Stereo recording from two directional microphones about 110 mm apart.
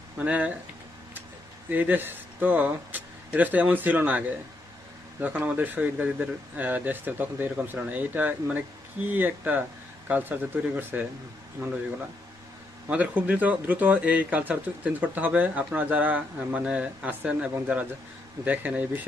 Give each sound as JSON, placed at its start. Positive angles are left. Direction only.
{"t": 0.2, "sound": "speech", "side_deg": -15}
{"t": 1.7, "sound": "speech", "side_deg": -15}
{"t": 5.2, "sound": "speech", "side_deg": -15}
{"t": 12.8, "sound": "speech", "side_deg": -15}